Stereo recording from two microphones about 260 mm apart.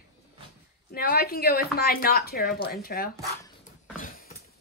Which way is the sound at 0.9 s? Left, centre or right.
Left.